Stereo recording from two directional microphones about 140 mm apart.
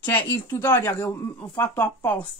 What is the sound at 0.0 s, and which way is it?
Speech, 10° left (ahead or behind).